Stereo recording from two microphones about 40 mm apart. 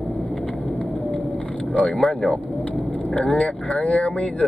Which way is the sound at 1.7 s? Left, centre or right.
Left.